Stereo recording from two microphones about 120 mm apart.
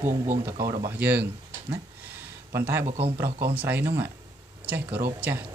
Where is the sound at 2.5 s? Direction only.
20° right (ahead or behind).